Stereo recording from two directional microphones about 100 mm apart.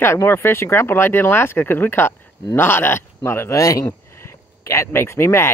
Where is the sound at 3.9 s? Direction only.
25° left (ahead or behind).